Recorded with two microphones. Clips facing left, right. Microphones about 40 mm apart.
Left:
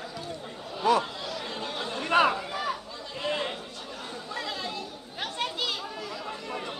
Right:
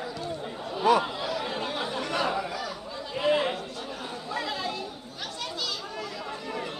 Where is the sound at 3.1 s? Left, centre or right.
Centre.